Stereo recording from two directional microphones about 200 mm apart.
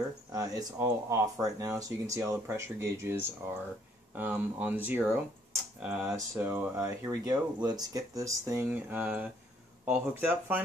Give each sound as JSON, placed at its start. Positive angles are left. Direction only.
{"t": 0.3, "sound": "speech", "side_deg": -15}